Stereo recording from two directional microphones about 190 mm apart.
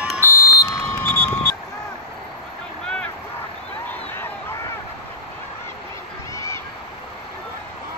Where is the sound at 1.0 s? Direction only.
10° left (ahead or behind).